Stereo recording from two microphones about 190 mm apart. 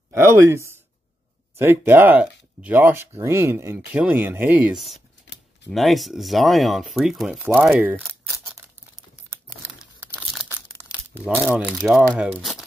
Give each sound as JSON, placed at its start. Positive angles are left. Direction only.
{"t": 0.1, "sound": "speech", "side_deg": -15}
{"t": 5.3, "sound": "a sound", "side_deg": 70}
{"t": 5.7, "sound": "speech", "side_deg": 0}
{"t": 9.8, "sound": "crumpling", "side_deg": -5}
{"t": 11.2, "sound": "speech", "side_deg": -5}